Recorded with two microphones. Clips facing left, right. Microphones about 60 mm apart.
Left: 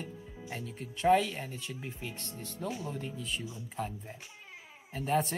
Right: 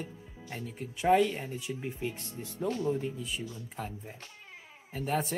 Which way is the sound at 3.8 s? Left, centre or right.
Centre.